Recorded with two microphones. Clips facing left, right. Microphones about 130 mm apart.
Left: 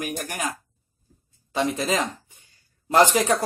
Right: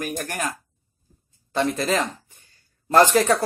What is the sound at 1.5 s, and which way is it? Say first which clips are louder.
Speech: right 2 dB; 10° left (ahead or behind).